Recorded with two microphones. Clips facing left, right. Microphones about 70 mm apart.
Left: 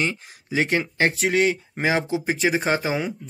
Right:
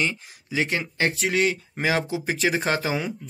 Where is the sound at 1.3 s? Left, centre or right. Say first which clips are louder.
Left 2 dB; left.